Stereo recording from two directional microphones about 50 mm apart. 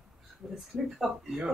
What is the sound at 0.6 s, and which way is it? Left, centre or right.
Speech, centre.